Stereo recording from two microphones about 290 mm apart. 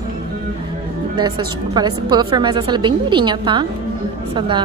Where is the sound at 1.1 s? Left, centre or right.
Centre.